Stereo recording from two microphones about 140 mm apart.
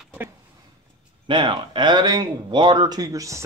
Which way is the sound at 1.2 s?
35° right (ahead or behind).